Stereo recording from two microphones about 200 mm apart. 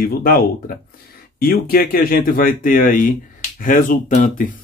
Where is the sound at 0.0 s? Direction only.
45° left (ahead or behind).